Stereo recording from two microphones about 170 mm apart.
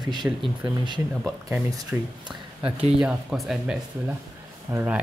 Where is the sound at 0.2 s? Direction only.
10° right (ahead or behind).